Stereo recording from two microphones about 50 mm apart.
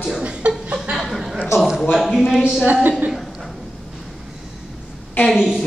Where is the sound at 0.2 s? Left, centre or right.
Right.